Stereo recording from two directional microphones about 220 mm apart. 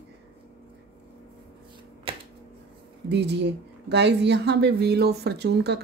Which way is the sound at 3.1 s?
50° right (ahead or behind).